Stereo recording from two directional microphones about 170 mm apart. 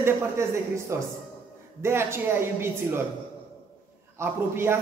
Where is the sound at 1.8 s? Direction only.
15° right (ahead or behind).